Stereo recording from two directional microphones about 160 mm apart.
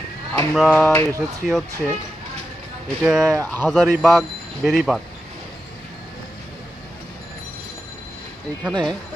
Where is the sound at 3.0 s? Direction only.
5° right (ahead or behind).